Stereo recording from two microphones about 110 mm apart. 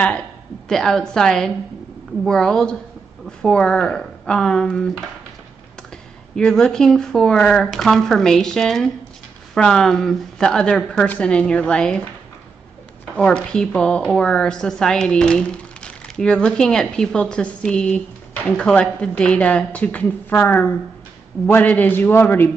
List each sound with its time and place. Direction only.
0.7 s speech: 5° left (ahead or behind)
6.3 s speech: 5° left (ahead or behind)
13.0 s a man's voice: 10° left (ahead or behind)